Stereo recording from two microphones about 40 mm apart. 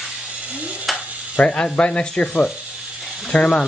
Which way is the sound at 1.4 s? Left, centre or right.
Left.